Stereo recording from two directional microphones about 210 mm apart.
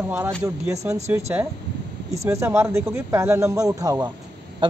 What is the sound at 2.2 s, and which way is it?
A man's voice, 10° right (ahead or behind).